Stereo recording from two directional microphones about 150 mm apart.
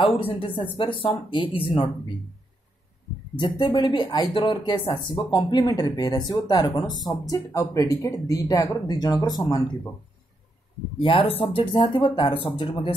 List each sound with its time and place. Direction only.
0.0 s speech: 40° left (ahead or behind)
3.3 s speech: 30° left (ahead or behind)
11.0 s speech: 35° left (ahead or behind)